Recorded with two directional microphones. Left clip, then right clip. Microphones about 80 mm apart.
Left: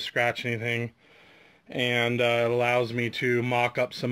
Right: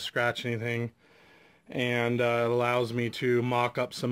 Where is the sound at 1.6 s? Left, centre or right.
Right.